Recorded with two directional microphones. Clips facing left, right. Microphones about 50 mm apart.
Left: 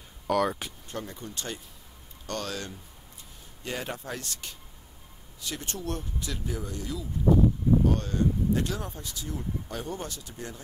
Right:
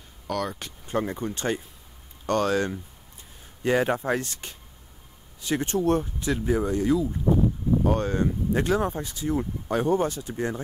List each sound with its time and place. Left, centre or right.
0.3 s speech: centre
1.0 s speech: right
10.3 s speech: right